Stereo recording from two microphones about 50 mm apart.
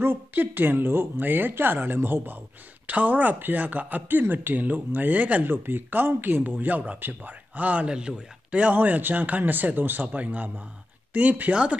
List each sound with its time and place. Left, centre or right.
0.0 s speech: right
2.9 s speech: right
5.5 s speech: right
8.7 s speech: right